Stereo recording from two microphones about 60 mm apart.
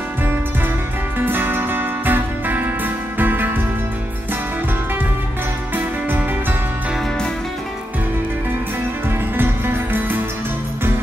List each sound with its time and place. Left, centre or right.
1.2 s music: right
5.8 s music: right
9.4 s music: right